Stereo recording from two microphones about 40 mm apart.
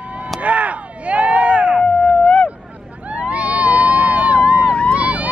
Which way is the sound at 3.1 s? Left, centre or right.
Right.